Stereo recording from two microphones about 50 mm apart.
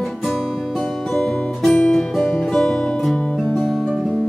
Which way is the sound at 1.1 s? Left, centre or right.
Centre.